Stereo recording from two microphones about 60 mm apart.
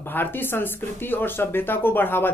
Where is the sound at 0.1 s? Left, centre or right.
Left.